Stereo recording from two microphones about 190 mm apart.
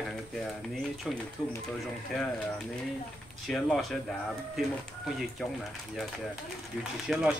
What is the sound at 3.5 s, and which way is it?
Speech, centre (ahead or behind).